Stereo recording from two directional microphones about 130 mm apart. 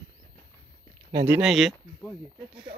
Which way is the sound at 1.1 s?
20° right (ahead or behind).